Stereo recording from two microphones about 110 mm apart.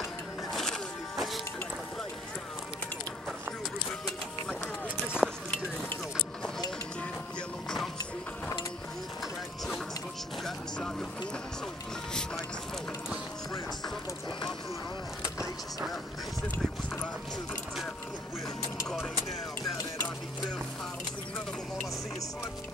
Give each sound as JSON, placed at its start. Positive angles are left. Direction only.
{"t": 0.0, "sound": "music", "side_deg": 5}
{"t": 5.0, "sound": "a sound", "side_deg": -10}
{"t": 10.4, "sound": "music", "side_deg": 5}
{"t": 15.2, "sound": "vehicle", "side_deg": 30}
{"t": 16.5, "sound": "run", "side_deg": 15}
{"t": 19.6, "sound": "music", "side_deg": 30}